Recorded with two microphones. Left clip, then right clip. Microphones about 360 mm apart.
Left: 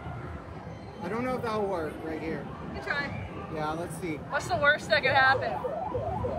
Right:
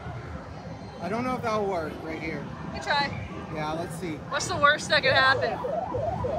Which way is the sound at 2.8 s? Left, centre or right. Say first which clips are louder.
Right 6 dB; centre.